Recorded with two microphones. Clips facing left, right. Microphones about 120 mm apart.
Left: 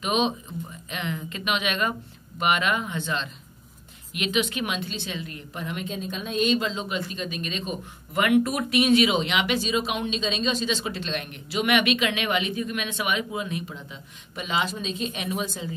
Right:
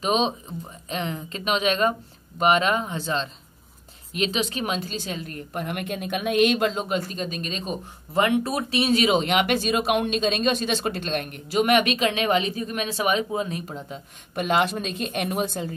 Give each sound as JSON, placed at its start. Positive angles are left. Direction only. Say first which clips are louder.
{"t": 0.0, "sound": "a woman's voice", "louder": "right 2 dB", "side_deg": -35}